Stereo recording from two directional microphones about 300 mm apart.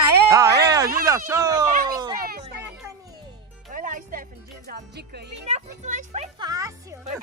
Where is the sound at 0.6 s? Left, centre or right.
Centre.